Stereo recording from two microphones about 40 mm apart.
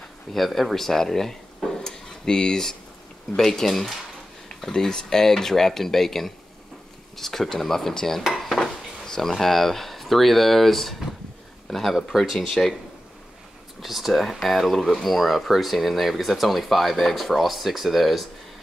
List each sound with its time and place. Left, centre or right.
0.3 s speech: centre
8.2 s dishes: centre
8.5 s speech: centre
12.4 s speech: centre
13.7 s speech: centre